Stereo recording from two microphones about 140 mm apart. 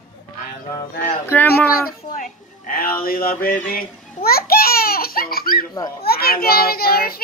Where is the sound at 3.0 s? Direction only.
90° left.